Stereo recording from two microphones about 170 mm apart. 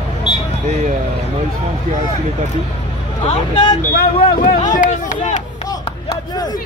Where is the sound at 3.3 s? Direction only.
30° left (ahead or behind).